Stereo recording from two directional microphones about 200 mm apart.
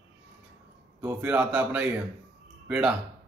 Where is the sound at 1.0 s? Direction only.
5° right (ahead or behind).